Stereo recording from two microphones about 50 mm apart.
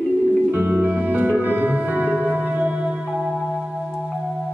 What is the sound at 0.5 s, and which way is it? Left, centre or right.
Music, right.